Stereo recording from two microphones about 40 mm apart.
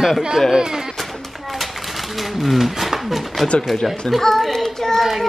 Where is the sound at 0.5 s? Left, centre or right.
Centre.